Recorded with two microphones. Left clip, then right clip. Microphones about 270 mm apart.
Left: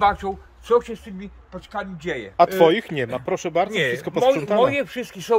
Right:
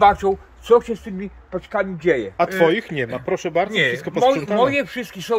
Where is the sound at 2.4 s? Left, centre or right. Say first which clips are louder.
Left 7 dB; centre.